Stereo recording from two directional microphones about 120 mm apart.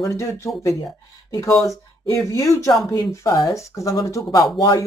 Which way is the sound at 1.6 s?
25° left (ahead or behind).